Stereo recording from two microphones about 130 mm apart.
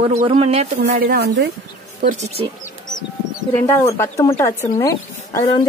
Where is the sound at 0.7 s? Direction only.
75° right (ahead or behind).